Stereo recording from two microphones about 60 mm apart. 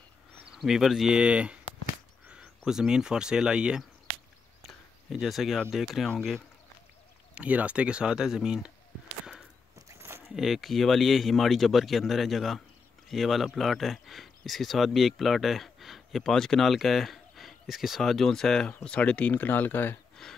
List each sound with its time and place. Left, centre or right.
0.6 s speech: centre
1.1 s speech: centre
4.6 s a sound: centre
5.7 s speech: centre
7.3 s speech: right
9.9 s a sound: right
10.3 s speech: centre
18.9 s speech: left
20.2 s a sound: centre